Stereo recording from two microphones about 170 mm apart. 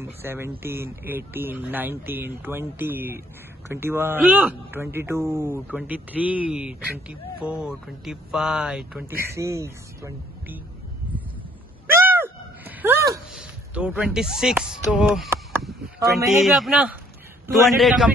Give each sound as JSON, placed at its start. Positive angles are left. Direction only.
{"t": 0.0, "sound": "speech", "side_deg": -15}
{"t": 9.0, "sound": "speech", "side_deg": -15}
{"t": 11.9, "sound": "a sound", "side_deg": -15}
{"t": 13.3, "sound": "speech", "side_deg": -5}
{"t": 15.6, "sound": "a sound", "side_deg": 0}
{"t": 16.4, "sound": "speech", "side_deg": 0}